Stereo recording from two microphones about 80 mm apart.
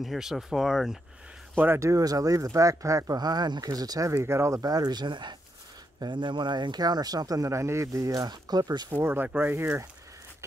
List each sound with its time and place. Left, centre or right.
0.0 s speech: centre
1.8 s speech: right
3.2 s speech: right
8.3 s speech: right
8.9 s speech: right